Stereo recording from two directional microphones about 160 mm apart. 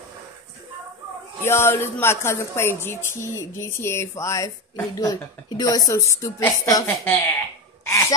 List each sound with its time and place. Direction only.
1.4 s a woman's voice: 15° left (ahead or behind)